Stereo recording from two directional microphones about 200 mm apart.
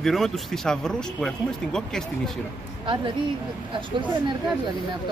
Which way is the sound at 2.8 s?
25° right (ahead or behind).